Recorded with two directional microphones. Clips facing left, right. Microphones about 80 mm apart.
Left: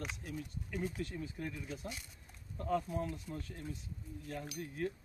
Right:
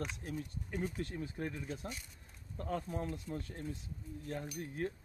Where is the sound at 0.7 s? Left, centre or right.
Right.